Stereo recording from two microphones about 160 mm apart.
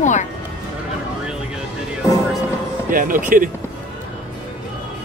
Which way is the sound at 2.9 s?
55° right (ahead or behind).